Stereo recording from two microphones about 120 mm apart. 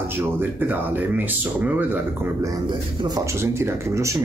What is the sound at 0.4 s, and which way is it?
Speech, 15° right (ahead or behind).